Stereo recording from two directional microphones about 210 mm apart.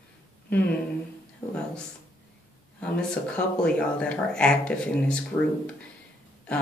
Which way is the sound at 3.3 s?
5° left (ahead or behind).